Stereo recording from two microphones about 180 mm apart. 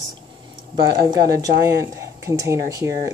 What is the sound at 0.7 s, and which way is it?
Speech, 20° right (ahead or behind).